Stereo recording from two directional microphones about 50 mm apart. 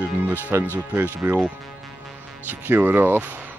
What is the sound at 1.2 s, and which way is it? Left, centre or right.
Speech, right.